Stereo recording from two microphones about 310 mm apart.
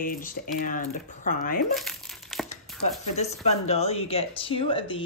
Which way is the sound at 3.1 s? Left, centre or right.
Left.